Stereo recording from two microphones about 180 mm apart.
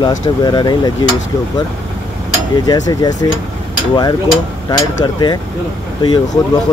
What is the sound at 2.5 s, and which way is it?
Speech, 20° left (ahead or behind).